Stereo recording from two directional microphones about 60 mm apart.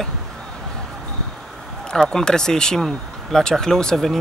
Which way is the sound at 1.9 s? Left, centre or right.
Centre.